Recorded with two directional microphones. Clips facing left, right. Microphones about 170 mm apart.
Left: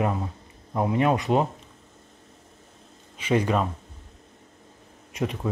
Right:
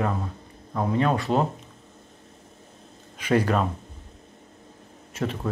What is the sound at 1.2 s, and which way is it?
Speech, 5° left (ahead or behind).